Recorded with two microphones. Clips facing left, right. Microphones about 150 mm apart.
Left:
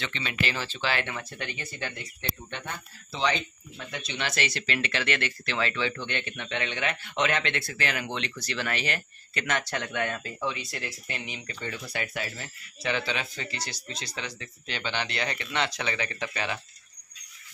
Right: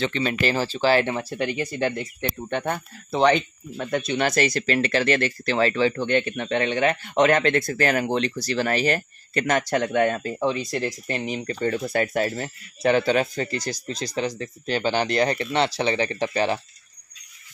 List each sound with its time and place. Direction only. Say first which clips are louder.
0.0 s speech: right 9 dB; 40° right (ahead or behind)